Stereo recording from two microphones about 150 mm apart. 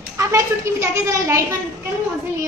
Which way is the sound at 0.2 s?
20° right (ahead or behind).